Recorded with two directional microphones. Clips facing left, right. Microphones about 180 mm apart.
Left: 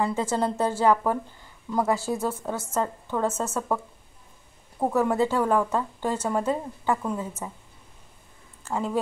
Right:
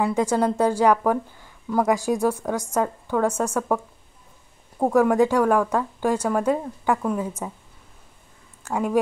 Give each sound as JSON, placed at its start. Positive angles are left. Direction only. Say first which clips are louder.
{"t": 0.0, "sound": "a woman's voice", "louder": "right 4 dB", "side_deg": -15}
{"t": 8.6, "sound": "a woman's voice", "louder": "right 5 dB", "side_deg": -15}